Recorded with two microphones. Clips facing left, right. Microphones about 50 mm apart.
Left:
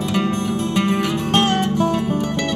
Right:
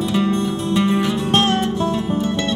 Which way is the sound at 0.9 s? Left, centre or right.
Centre.